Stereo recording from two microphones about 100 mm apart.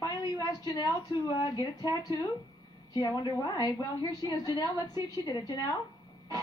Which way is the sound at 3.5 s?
40° left (ahead or behind).